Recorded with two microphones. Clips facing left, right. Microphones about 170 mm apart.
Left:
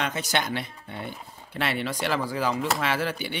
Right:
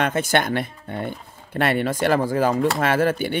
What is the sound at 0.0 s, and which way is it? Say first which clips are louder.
A man's voice: right 7 dB; 55° right (ahead or behind).